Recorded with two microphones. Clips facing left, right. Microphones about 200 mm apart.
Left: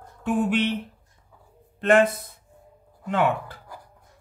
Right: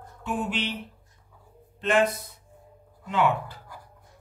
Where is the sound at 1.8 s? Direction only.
55° left (ahead or behind).